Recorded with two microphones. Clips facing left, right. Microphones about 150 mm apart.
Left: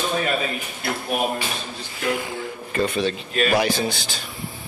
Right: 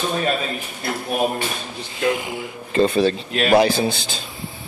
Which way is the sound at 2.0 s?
20° right (ahead or behind).